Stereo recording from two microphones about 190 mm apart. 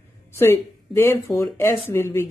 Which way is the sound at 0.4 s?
10° left (ahead or behind).